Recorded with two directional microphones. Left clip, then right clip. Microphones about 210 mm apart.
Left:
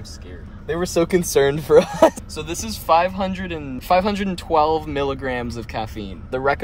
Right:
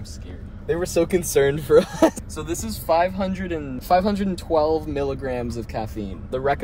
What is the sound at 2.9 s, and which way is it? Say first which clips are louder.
Speech: left 3 dB; 45° left (ahead or behind).